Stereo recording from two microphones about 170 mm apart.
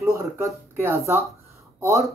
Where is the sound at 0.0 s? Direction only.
15° right (ahead or behind).